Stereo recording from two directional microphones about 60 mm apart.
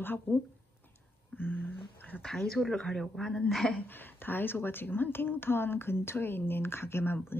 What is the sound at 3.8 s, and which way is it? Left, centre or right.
Speech, left.